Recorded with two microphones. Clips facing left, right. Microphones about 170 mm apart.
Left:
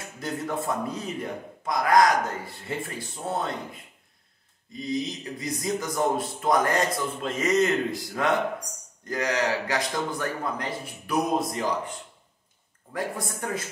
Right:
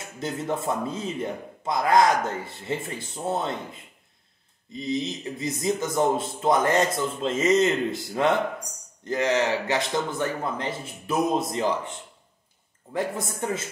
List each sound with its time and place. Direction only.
0.2 s a man's voice: 25° right (ahead or behind)
12.9 s a man's voice: 25° right (ahead or behind)